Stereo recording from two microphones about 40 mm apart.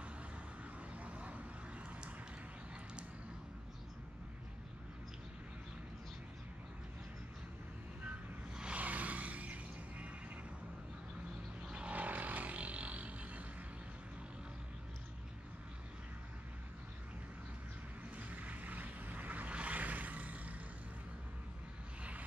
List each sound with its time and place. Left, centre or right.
0.9 s vehicle: right
8.7 s music: right
11.6 s vehicle: right
11.9 s vehicle: right
18.1 s vehicle: right
19.5 s a sound: right